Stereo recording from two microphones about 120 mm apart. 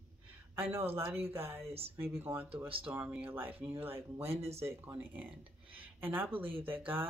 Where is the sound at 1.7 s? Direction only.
55° right (ahead or behind).